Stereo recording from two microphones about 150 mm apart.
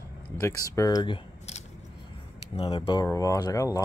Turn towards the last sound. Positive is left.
turn(degrees=20)  # may be behind; listen again after turning